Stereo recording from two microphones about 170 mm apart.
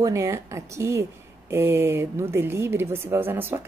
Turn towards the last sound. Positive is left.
turn(degrees=-10)  # may be behind; listen again after turning